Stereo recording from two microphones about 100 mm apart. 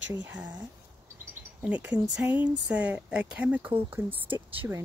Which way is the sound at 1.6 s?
15° right (ahead or behind).